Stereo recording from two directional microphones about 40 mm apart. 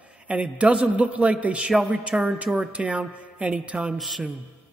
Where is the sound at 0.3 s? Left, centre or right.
Right.